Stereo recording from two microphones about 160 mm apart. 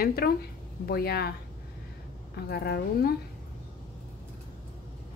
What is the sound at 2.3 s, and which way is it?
Speech, 80° left.